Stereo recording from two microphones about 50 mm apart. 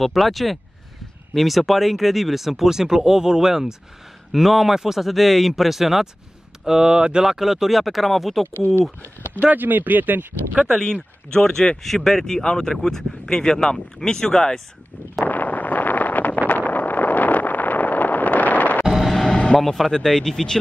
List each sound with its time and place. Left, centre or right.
0.0 s speech: centre
8.5 s speech: left
9.4 s speech: right
10.8 s speech: centre
15.2 s a sound: left
18.9 s vehicle: centre
19.3 s vehicle: centre
19.6 s speech: centre